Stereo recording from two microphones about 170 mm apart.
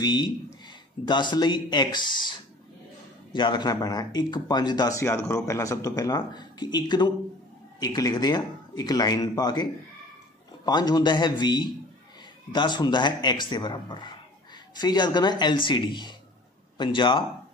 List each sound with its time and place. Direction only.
0.0 s speech: 25° left (ahead or behind)
3.3 s speech: 25° left (ahead or behind)